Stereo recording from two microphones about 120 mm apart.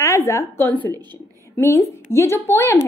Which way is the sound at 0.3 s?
20° left (ahead or behind).